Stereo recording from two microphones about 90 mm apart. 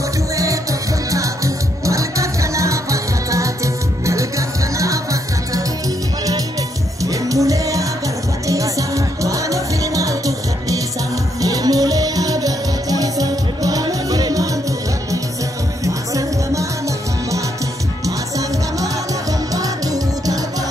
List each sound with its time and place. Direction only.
0.4 s music: 40° right (ahead or behind)
7.0 s music: 40° right (ahead or behind)
15.8 s music: 40° right (ahead or behind)
19.5 s music: 40° right (ahead or behind)